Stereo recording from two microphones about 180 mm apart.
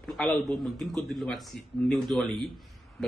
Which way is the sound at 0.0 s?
Centre (ahead or behind).